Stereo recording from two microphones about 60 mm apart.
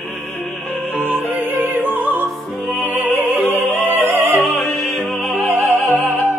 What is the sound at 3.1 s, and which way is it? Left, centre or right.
Music, right.